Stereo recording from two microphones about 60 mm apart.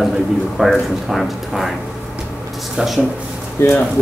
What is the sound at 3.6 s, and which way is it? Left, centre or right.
Speech, left.